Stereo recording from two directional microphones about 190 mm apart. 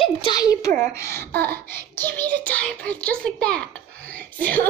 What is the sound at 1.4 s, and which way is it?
Child singing, 10° left (ahead or behind).